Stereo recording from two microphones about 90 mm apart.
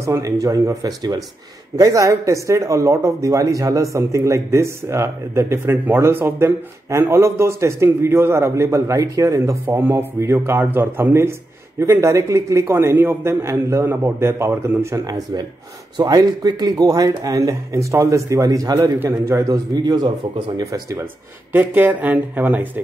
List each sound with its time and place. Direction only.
0.0 s speech: 35° right (ahead or behind)
9.7 s a man's voice: 25° right (ahead or behind)
19.7 s a man's voice: 50° right (ahead or behind)
21.5 s a man's voice: 20° right (ahead or behind)